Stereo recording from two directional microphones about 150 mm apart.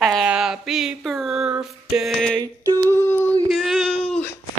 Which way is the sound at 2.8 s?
15° left (ahead or behind).